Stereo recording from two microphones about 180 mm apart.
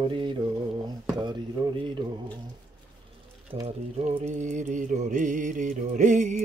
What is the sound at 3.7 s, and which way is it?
Mantra, 35° right (ahead or behind).